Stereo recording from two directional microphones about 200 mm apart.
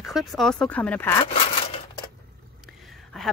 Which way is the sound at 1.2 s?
25° left (ahead or behind).